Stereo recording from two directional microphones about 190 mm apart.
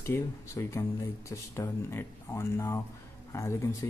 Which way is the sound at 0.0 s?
15° left (ahead or behind).